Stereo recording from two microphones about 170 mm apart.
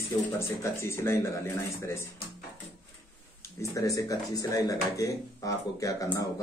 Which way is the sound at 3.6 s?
20° left (ahead or behind).